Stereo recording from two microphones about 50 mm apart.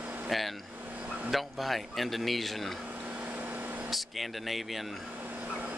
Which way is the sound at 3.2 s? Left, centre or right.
Right.